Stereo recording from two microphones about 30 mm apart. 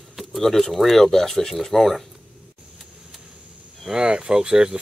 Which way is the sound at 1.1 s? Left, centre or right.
Centre.